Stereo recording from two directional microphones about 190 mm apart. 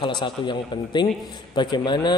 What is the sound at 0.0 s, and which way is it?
A man's voice, 25° left (ahead or behind).